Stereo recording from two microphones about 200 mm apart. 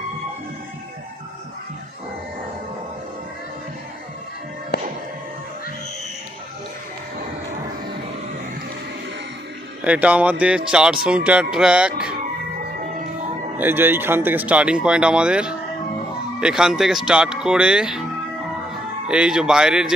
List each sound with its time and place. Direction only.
4.7 s music: 55° left (ahead or behind)
9.8 s a man's voice: 5° right (ahead or behind)
13.6 s a man's voice: 10° right (ahead or behind)
19.0 s a man's voice: 5° right (ahead or behind)